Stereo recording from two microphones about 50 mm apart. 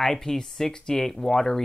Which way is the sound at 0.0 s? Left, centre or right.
Centre.